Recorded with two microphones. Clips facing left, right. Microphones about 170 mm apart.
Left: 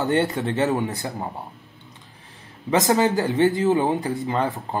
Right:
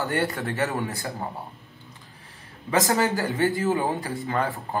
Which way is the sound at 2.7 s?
20° left (ahead or behind).